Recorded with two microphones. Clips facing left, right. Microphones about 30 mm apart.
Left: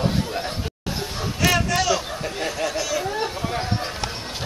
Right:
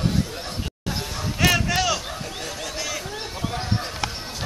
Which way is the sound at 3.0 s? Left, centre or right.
Centre.